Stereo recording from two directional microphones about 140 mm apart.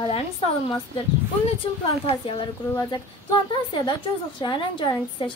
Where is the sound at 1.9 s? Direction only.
40° left (ahead or behind).